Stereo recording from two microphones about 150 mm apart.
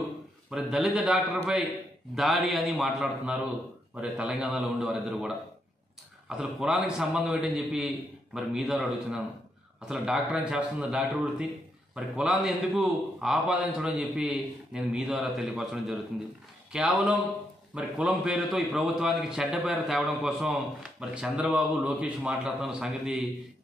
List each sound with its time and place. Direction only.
0.5 s a man's voice: 5° right (ahead or behind)